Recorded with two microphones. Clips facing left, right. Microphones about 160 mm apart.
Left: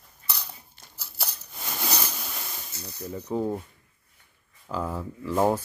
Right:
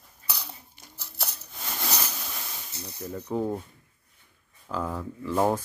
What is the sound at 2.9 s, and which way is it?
Speech, 15° left (ahead or behind).